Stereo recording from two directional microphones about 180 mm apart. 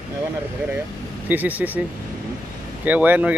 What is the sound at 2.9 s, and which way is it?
Speech, 10° right (ahead or behind).